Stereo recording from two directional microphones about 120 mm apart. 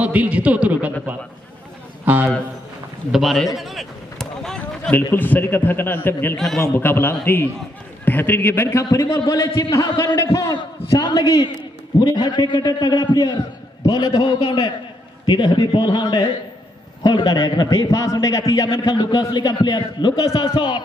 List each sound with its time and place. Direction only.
0.0 s a man's voice: 10° right (ahead or behind)
2.0 s a man's voice: 15° right (ahead or behind)
3.1 s run: centre (ahead or behind)
5.1 s a man's voice: 15° left (ahead or behind)
6.3 s a man's voice: 5° left (ahead or behind)
6.6 s a man's voice: 20° left (ahead or behind); by 20.8 s 40° left (ahead or behind)